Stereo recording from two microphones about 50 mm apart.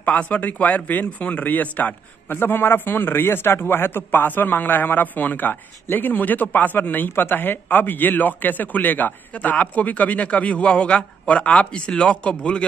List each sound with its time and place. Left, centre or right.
0.0 s speech: left